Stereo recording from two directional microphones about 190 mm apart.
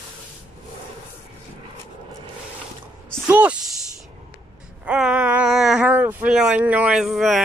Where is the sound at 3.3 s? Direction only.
10° right (ahead or behind).